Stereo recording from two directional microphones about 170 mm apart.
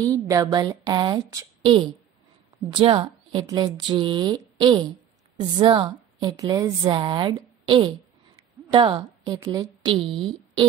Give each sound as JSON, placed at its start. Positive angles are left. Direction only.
{"t": 0.0, "sound": "a woman's voice", "side_deg": -20}